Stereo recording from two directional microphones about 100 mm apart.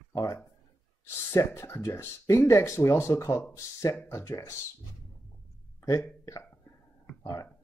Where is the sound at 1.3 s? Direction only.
25° left (ahead or behind).